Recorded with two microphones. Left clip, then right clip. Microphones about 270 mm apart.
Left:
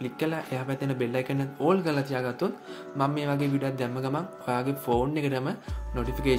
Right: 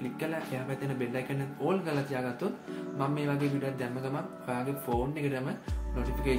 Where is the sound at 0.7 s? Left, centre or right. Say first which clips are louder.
Left 5 dB; left.